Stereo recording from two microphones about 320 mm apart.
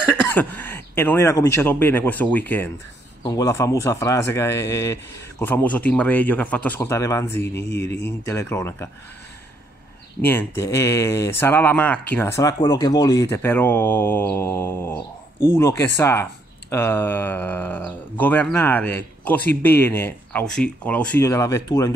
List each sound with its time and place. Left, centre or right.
0.1 s speech: centre
7.8 s speech: centre
8.3 s speech: centre
10.2 s speech: centre